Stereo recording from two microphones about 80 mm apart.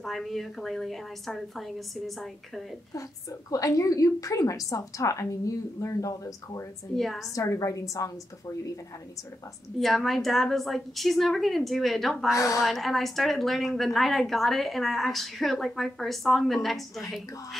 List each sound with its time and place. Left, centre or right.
0.0 s a woman's voice: centre
2.9 s a woman's voice: left
7.0 s a woman's voice: centre
7.3 s a woman's voice: left
9.8 s a woman's voice: centre
12.4 s a woman's voice: left
12.6 s a woman's voice: centre